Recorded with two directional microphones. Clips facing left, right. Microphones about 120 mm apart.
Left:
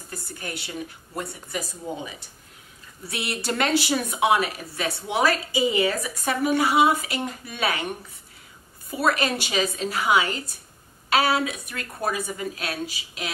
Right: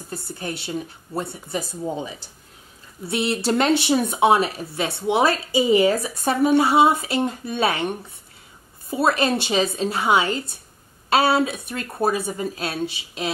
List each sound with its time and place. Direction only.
0.4 s speech: 30° right (ahead or behind)
8.9 s speech: 25° right (ahead or behind)